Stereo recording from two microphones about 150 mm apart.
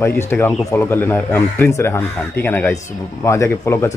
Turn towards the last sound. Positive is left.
turn(degrees=20)  # may be behind; listen again after turning